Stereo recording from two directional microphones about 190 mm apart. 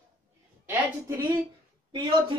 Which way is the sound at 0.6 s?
10° right (ahead or behind).